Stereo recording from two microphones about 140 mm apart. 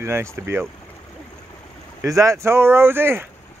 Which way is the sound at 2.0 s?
20° right (ahead or behind).